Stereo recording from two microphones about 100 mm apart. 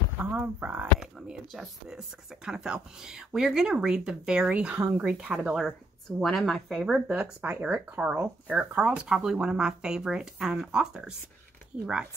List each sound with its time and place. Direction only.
0.2 s speech: 15° right (ahead or behind)
0.9 s speech: 5° right (ahead or behind)